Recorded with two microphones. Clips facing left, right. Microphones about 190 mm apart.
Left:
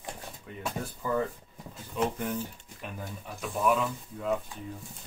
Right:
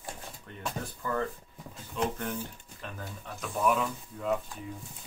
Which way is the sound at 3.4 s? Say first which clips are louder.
Left 1 dB; centre (ahead or behind).